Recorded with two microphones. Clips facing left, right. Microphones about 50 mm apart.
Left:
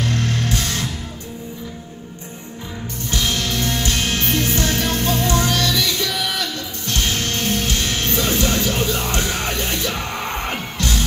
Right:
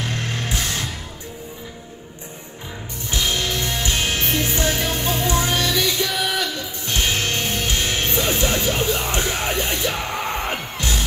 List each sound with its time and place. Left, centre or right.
0.0 s music: centre
3.1 s music: centre